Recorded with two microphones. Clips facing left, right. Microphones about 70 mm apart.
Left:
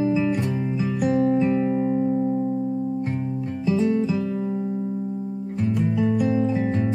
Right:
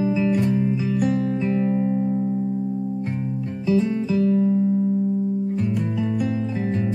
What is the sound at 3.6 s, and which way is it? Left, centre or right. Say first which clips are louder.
Music: even; centre.